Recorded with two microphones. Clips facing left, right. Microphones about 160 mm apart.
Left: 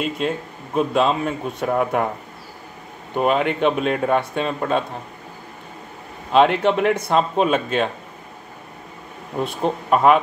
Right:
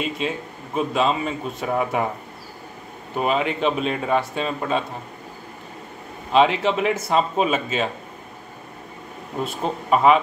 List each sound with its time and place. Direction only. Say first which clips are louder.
0.2 s speech: left 3 dB; centre (ahead or behind)
3.2 s speech: left 3 dB; centre (ahead or behind)
6.3 s speech: left 2 dB; centre (ahead or behind)
9.4 s speech: left 3 dB; centre (ahead or behind)